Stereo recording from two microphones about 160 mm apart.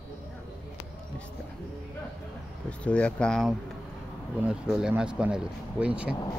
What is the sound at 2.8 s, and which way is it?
Speech, 5° left (ahead or behind).